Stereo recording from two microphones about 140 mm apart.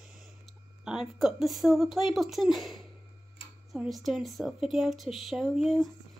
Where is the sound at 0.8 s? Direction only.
Centre (ahead or behind).